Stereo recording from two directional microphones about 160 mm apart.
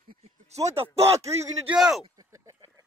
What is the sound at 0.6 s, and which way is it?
Speech, 20° right (ahead or behind).